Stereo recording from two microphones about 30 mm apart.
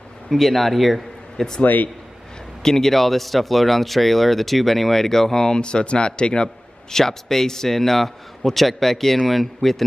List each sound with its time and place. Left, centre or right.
0.3 s speech: centre
1.6 s a man's voice: left
2.6 s speech: centre
5.6 s a man's voice: left; by 9.8 s centre